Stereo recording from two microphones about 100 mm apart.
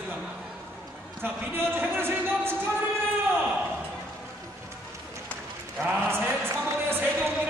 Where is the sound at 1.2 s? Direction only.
20° right (ahead or behind).